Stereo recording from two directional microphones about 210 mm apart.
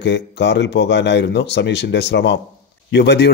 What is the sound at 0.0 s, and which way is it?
Speech, 55° left (ahead or behind).